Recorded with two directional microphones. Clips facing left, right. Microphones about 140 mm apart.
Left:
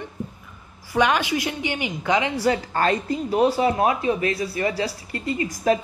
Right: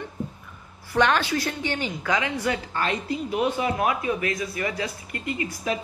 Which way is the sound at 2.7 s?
40° left (ahead or behind).